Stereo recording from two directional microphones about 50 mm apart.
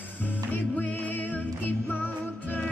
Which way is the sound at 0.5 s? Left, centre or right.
Left.